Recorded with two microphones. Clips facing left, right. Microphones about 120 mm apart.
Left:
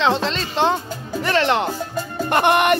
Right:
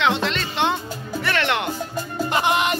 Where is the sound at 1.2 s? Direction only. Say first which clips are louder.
Left 5 dB; 35° left (ahead or behind).